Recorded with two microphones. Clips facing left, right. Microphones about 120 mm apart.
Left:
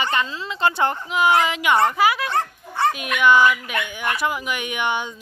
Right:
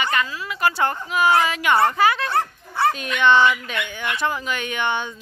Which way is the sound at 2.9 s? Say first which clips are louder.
Left 1 dB; 10° left (ahead or behind).